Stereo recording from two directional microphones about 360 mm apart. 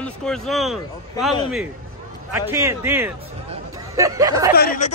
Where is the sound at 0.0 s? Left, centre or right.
Centre.